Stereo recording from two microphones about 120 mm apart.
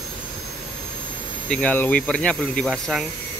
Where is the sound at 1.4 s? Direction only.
10° left (ahead or behind).